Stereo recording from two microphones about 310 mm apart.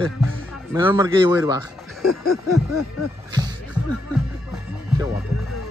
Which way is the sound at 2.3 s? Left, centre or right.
Left.